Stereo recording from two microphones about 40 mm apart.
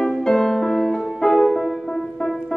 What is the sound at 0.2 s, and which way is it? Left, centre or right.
Music, centre.